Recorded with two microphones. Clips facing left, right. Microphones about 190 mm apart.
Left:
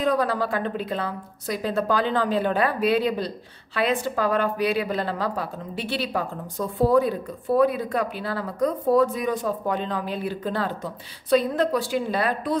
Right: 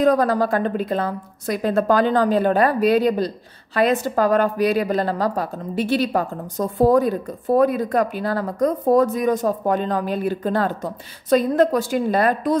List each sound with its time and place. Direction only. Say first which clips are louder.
0.0 s a woman's voice: right 6 dB; 45° right (ahead or behind)